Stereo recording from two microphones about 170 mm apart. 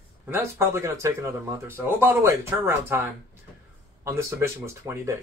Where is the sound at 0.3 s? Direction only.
15° right (ahead or behind).